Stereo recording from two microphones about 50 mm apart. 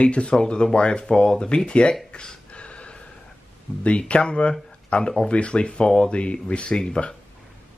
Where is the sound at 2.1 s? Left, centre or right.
Centre.